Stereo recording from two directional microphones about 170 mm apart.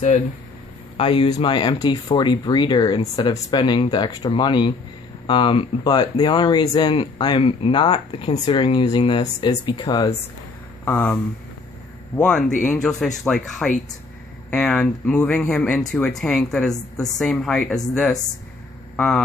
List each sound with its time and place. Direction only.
0.9 s speech: 30° left (ahead or behind)
10.9 s speech: 10° left (ahead or behind)
12.2 s speech: 5° left (ahead or behind)